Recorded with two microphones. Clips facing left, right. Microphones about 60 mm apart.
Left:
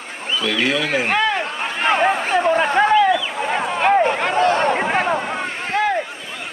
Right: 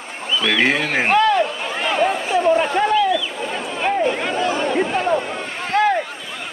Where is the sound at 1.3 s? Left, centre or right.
Left.